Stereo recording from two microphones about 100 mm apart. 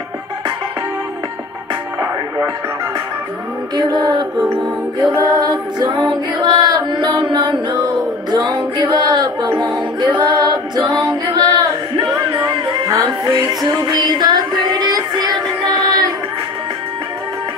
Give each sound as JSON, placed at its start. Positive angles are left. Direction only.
{"t": 2.0, "sound": "music", "side_deg": -40}
{"t": 3.7, "sound": "music", "side_deg": -45}
{"t": 5.3, "sound": "music", "side_deg": -40}
{"t": 12.8, "sound": "music", "side_deg": -35}